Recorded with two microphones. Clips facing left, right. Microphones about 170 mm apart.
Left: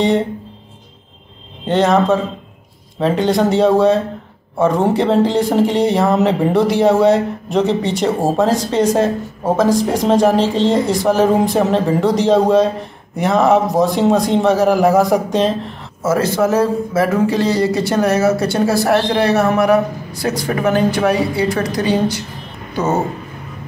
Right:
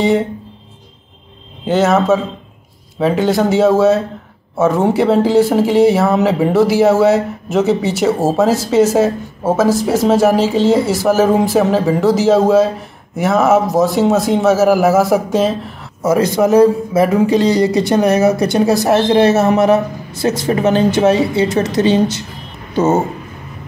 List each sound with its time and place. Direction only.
1.7 s speech: 5° right (ahead or behind)
16.0 s speech: 15° right (ahead or behind)